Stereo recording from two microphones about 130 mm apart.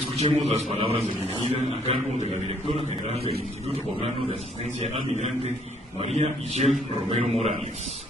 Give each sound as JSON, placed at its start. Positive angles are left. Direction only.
{"t": 0.2, "sound": "a man's voice", "side_deg": -50}
{"t": 1.6, "sound": "a man's voice", "side_deg": -60}
{"t": 4.7, "sound": "a man's voice", "side_deg": -60}